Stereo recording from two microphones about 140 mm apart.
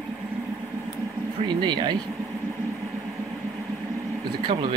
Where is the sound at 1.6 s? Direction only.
30° right (ahead or behind).